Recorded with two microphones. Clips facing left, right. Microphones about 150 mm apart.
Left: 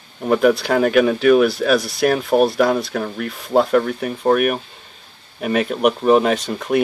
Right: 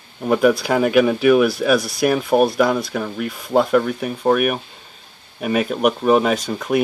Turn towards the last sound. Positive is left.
turn(degrees=0)  # may be behind; listen again after turning